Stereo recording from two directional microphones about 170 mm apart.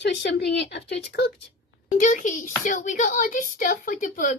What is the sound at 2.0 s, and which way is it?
Speech, 50° left (ahead or behind).